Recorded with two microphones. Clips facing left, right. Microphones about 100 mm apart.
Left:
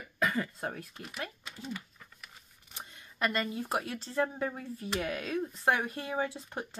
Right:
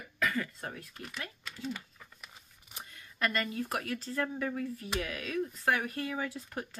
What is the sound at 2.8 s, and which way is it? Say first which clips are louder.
Speech: left 1 dB; 20° left (ahead or behind).